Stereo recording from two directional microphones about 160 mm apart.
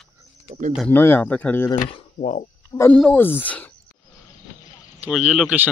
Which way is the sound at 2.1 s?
50° left (ahead or behind).